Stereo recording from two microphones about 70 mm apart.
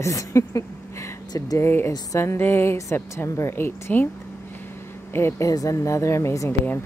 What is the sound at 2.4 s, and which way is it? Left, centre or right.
Speech, left.